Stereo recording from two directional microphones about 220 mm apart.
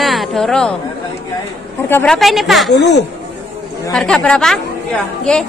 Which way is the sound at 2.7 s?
50° left (ahead or behind).